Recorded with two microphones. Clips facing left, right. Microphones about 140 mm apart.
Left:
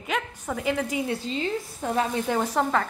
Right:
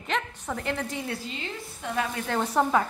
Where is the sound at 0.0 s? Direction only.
5° left (ahead or behind).